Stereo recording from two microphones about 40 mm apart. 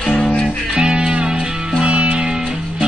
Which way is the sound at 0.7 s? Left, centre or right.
Right.